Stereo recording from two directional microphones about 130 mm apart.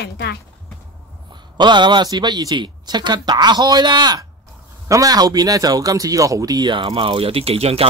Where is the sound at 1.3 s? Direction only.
35° right (ahead or behind).